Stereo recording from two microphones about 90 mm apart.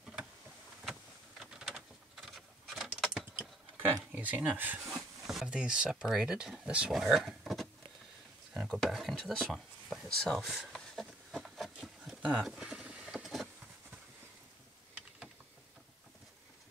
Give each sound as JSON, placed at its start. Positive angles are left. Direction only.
{"t": 0.0, "sound": "vehicle", "side_deg": -10}
{"t": 1.4, "sound": "a sound", "side_deg": -5}
{"t": 4.1, "sound": "speech", "side_deg": -20}
{"t": 4.8, "sound": "speech", "side_deg": -5}
{"t": 10.4, "sound": "a sound", "side_deg": -5}
{"t": 12.4, "sound": "vehicle", "side_deg": -5}